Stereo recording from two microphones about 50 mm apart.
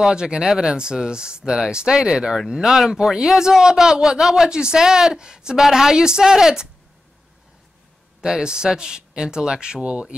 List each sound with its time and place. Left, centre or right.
0.1 s speech: centre
8.2 s speech: centre